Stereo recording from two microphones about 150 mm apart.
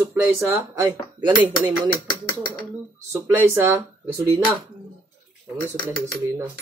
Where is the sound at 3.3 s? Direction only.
15° right (ahead or behind).